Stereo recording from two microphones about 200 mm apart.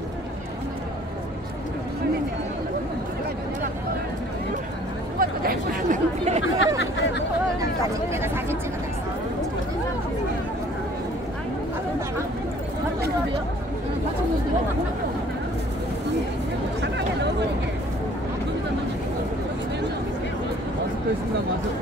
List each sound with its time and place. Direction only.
5.2 s chatter: 45° right (ahead or behind)
6.4 s a sound: 70° left (ahead or behind)
8.1 s speech: 10° right (ahead or behind)